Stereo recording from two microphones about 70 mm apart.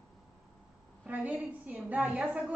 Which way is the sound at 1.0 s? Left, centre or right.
Right.